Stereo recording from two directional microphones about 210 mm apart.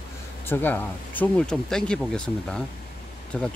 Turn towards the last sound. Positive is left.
turn(degrees=5)  # may be behind; listen again after turning